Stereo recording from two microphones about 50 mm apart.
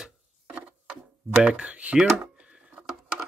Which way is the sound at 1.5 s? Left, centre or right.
Right.